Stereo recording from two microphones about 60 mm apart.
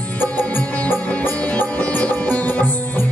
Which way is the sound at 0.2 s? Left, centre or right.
Left.